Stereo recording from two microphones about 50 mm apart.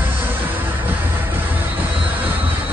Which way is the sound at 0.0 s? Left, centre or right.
Right.